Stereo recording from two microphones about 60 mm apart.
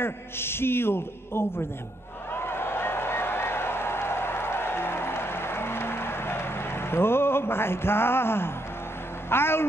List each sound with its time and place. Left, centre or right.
0.0 s a man's voice: left
2.3 s run: left
9.3 s a man's voice: left